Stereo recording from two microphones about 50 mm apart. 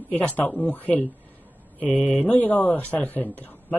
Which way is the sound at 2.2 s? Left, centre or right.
Left.